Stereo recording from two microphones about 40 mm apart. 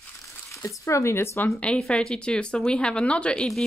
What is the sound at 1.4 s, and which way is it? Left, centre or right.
Speech, left.